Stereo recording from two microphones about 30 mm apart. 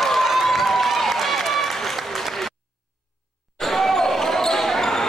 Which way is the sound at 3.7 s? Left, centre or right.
Centre.